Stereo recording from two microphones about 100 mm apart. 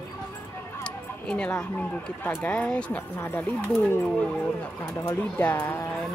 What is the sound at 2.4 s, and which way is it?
Speech, 10° left (ahead or behind).